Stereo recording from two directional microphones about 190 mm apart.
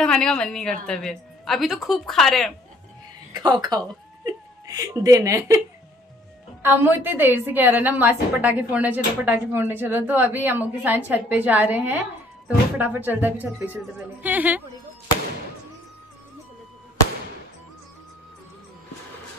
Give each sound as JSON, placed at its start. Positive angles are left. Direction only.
{"t": 0.0, "sound": "a woman's voice", "side_deg": 5}
{"t": 3.3, "sound": "speech", "side_deg": -20}
{"t": 6.6, "sound": "a woman's voice", "side_deg": -10}